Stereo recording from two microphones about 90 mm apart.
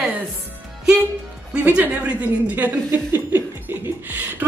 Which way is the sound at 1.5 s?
15° right (ahead or behind).